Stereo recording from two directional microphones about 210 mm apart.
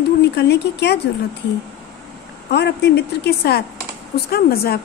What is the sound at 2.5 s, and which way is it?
A woman's voice, 55° left (ahead or behind).